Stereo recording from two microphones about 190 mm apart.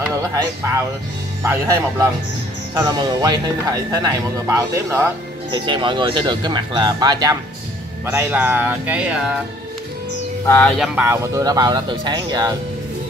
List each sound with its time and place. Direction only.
1.4 s speech: 15° right (ahead or behind)
10.4 s speech: 15° left (ahead or behind)
10.8 s speech: 10° right (ahead or behind)